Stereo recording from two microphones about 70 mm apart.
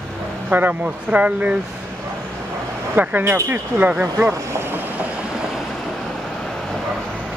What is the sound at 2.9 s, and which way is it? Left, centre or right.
Speech, right.